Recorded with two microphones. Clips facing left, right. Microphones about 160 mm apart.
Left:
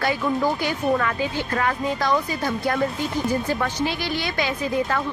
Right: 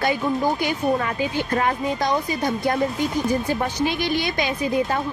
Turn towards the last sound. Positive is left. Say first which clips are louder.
# right 1 dB
turn(degrees=-15)  # may be behind; listen again after turning